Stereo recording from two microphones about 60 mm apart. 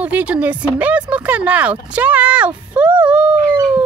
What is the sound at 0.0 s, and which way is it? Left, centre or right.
Speech, right.